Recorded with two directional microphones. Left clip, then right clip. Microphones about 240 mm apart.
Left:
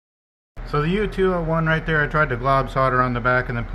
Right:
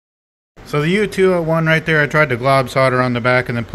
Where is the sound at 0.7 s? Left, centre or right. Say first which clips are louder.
Right 5 dB; right.